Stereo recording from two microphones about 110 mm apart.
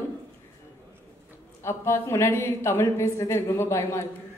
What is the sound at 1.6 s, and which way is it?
A woman's voice, 25° left (ahead or behind).